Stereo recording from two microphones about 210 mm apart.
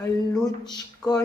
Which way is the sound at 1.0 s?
5° left (ahead or behind).